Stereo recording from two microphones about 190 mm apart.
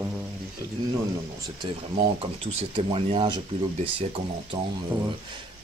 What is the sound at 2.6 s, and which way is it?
Speech, 30° right (ahead or behind).